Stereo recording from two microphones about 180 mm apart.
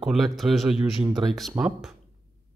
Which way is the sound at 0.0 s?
Centre (ahead or behind).